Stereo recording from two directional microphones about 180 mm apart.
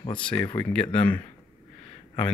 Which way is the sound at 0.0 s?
25° left (ahead or behind).